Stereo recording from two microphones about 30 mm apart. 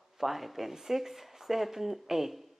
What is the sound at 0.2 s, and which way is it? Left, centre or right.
Speech, centre.